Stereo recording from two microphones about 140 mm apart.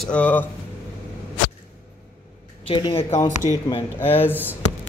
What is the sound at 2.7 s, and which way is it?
Speech, 40° left (ahead or behind).